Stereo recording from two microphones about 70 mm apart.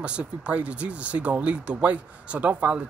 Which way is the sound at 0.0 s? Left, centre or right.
Centre.